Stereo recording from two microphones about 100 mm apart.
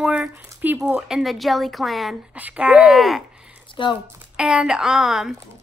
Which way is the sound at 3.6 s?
55° left (ahead or behind).